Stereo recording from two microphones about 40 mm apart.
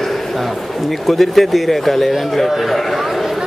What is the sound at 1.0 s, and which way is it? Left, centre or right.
A man's voice, centre.